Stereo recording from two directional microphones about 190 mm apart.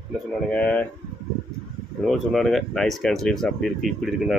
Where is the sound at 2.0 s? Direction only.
Centre (ahead or behind).